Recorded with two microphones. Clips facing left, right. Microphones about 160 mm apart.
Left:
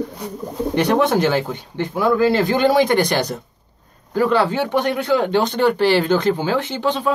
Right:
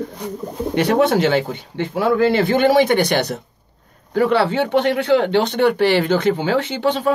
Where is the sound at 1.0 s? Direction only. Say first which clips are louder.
Right 1 dB; 65° right (ahead or behind).